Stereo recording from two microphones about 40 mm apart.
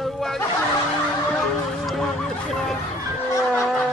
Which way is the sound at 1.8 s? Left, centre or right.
Centre.